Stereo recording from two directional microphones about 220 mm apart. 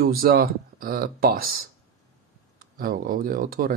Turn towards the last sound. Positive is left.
turn(degrees=-40)  # may be behind; listen again after turning